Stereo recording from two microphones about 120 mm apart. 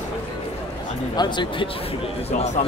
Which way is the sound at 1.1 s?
40° left (ahead or behind).